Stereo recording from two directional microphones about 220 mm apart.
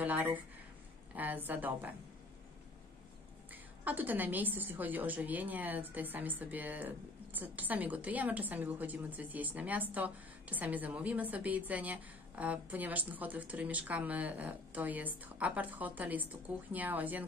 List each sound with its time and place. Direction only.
0.0 s a sound: 5° right (ahead or behind)
1.1 s a woman's voice: 10° right (ahead or behind)
3.8 s a woman's voice: 10° right (ahead or behind)